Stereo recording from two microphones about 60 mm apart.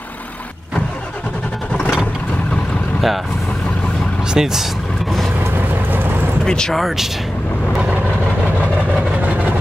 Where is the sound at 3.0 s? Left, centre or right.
Centre.